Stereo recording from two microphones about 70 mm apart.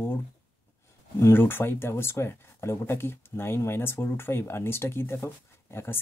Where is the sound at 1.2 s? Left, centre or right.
Left.